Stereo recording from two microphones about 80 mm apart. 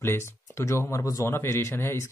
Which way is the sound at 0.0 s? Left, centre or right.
Left.